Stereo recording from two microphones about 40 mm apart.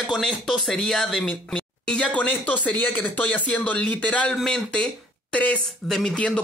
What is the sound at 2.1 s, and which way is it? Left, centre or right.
Speech, left.